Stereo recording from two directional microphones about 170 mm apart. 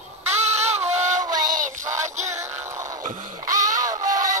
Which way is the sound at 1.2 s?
20° right (ahead or behind).